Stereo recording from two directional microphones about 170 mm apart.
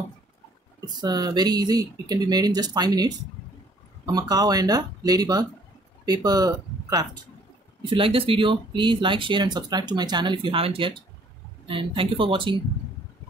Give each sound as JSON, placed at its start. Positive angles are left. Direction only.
{"t": 0.7, "sound": "speech", "side_deg": -25}